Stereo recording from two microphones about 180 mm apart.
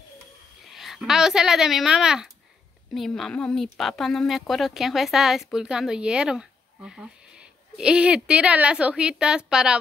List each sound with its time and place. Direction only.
0.7 s a woman's voice: centre (ahead or behind)